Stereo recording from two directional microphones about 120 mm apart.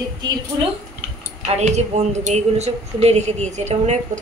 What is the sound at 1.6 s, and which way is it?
Speech, 70° right (ahead or behind).